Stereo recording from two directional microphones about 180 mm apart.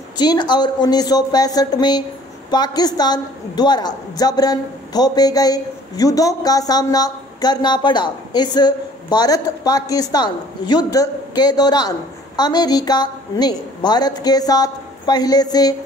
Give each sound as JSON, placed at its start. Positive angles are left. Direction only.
{"t": 0.2, "sound": "a woman's voice", "side_deg": 25}